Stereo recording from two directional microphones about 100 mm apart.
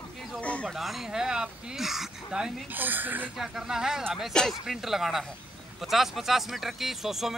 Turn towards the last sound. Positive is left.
turn(degrees=-5)  # may be behind; listen again after turning